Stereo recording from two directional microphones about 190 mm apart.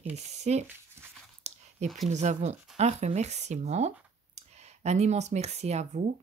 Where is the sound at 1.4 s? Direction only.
35° right (ahead or behind).